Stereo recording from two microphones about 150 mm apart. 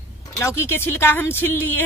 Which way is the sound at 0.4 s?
15° left (ahead or behind).